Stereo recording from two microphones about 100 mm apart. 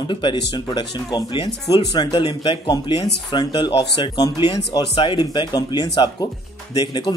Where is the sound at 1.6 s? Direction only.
35° left (ahead or behind).